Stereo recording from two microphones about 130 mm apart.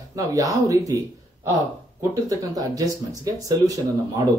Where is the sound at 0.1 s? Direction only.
25° right (ahead or behind).